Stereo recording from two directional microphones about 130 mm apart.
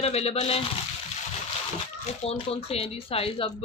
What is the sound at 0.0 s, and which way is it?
Speech, 50° left (ahead or behind).